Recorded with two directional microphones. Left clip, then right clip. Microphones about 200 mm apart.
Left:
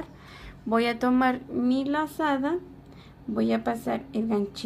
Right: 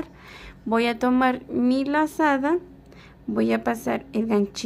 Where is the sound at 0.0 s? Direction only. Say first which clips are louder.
Right 4 dB; 25° right (ahead or behind).